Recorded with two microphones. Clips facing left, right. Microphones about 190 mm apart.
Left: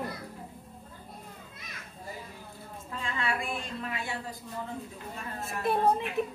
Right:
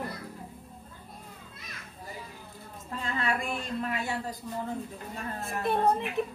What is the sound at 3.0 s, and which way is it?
Speech, 40° right (ahead or behind).